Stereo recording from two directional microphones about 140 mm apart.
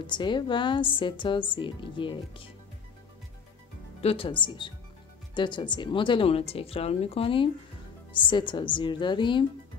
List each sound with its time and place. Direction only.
0.0 s speech: 35° left (ahead or behind)
4.0 s speech: 45° left (ahead or behind)